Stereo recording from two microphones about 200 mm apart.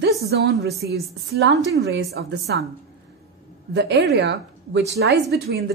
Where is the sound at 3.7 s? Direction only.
60° right (ahead or behind).